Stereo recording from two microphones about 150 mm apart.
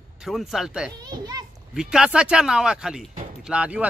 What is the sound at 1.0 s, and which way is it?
Speech, 25° right (ahead or behind).